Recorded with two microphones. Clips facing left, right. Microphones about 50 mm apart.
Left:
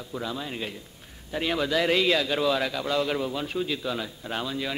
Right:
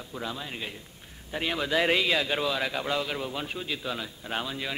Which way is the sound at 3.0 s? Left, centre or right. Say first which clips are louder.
Left 4 dB; centre.